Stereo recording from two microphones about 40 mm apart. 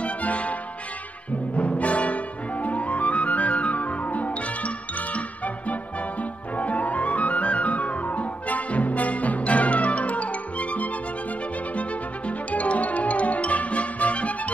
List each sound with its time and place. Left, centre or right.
0.0 s music: left
1.8 s music: left
12.3 s music: left